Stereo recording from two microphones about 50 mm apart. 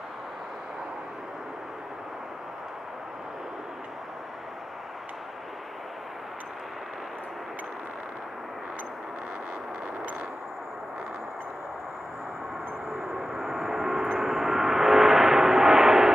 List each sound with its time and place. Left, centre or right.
12.9 s gong: centre
14.1 s vehicle: centre